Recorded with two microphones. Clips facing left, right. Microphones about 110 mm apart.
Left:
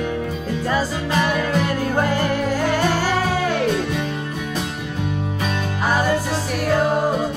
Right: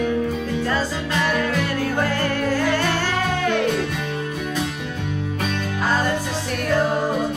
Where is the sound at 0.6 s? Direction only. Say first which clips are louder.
Left 2 dB; 15° left (ahead or behind).